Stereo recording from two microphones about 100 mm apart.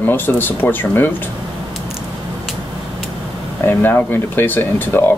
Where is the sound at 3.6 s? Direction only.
20° left (ahead or behind).